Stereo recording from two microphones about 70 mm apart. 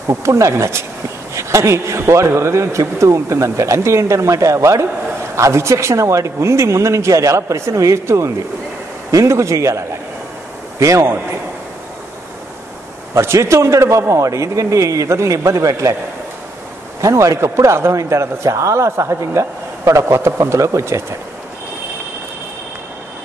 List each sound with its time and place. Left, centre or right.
0.1 s a man's voice: right
13.1 s a man's voice: right
17.0 s a man's voice: right